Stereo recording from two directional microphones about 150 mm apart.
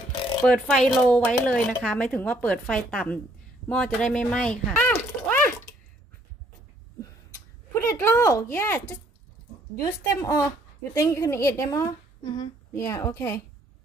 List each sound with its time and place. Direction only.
0.4 s a woman's voice: 5° left (ahead or behind)
7.9 s a woman's voice: 20° left (ahead or behind)